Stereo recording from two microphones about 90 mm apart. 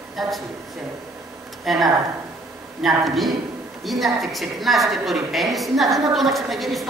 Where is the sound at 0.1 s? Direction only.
Centre (ahead or behind).